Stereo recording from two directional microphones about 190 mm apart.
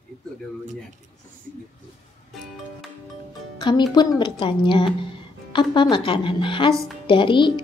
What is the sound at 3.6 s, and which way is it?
Speech, 20° left (ahead or behind).